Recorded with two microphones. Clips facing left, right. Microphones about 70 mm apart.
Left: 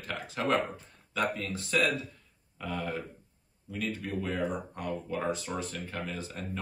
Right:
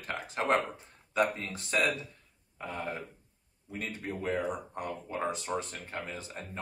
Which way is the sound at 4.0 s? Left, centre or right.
Right.